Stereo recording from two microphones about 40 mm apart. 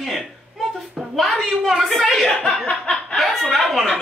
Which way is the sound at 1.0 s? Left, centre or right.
Centre.